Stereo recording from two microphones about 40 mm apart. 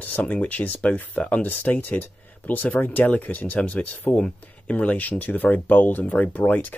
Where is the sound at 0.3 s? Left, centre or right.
Left.